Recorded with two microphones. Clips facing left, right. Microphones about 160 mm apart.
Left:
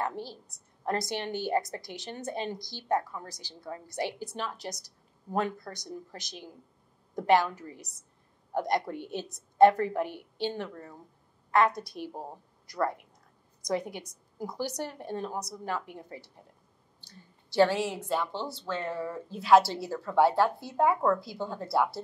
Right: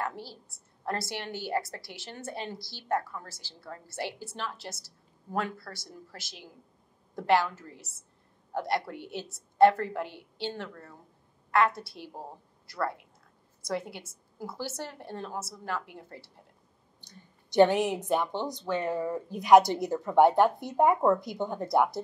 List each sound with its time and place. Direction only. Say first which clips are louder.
0.0 s a woman's voice: left 2 dB; 20° left (ahead or behind)
17.0 s speech: even; 20° right (ahead or behind)